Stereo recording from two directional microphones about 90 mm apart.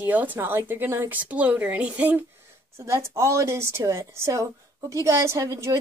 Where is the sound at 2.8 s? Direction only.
30° right (ahead or behind).